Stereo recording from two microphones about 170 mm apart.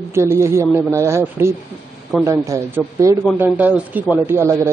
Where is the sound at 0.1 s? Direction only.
15° right (ahead or behind).